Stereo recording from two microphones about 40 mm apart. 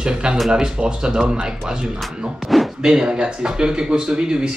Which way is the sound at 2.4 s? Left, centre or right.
Centre.